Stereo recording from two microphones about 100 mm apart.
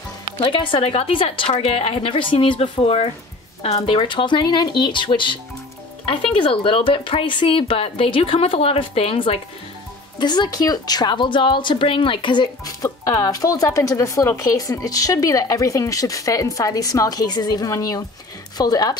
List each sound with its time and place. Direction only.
0.4 s a woman's voice: 55° left (ahead or behind)
10.1 s a woman's voice: 45° left (ahead or behind)
12.8 s speech: 40° left (ahead or behind)